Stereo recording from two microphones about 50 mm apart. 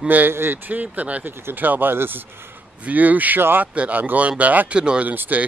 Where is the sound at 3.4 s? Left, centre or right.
Right.